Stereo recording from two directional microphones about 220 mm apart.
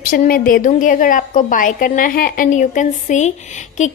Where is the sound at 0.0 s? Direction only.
40° left (ahead or behind).